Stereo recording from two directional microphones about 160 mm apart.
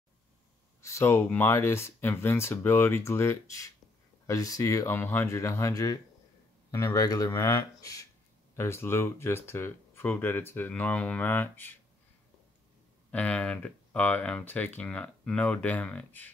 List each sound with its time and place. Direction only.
0.7 s speech: 15° left (ahead or behind)
13.1 s speech: 10° left (ahead or behind)